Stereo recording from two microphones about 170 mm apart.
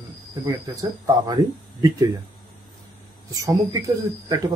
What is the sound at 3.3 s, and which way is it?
Speech, 20° right (ahead or behind).